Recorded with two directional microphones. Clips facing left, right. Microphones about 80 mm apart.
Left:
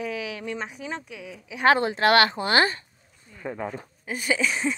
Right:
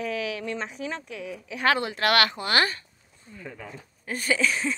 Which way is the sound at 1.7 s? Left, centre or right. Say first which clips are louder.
Left 4 dB; left.